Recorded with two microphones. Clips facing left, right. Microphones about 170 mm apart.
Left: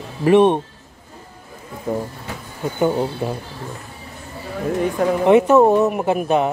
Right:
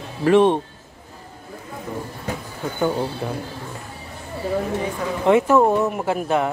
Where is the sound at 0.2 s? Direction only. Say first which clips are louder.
Left 2 dB; 15° left (ahead or behind).